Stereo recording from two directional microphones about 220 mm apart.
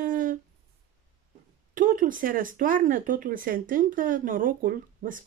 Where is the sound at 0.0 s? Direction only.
40° right (ahead or behind).